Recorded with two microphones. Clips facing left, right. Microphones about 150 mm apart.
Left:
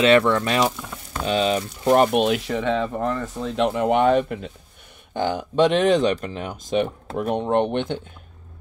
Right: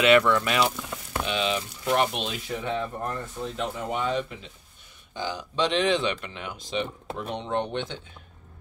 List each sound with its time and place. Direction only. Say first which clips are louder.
0.0 s speech: left 3 dB; 30° left (ahead or behind)
2.0 s speech: left 11 dB; 60° left (ahead or behind)